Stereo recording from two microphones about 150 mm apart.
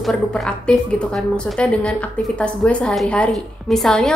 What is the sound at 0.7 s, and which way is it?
A woman's voice, 5° left (ahead or behind).